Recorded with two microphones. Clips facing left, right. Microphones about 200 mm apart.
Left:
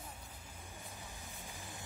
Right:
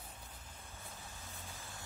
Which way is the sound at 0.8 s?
15° left (ahead or behind).